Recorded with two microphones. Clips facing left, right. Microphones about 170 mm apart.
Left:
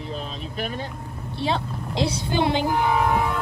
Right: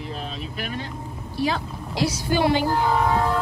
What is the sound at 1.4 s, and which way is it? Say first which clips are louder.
Speech: right 1 dB; 25° left (ahead or behind).